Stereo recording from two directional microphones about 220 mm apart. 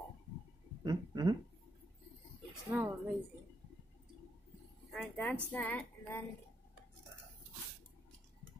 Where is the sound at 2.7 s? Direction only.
5° right (ahead or behind).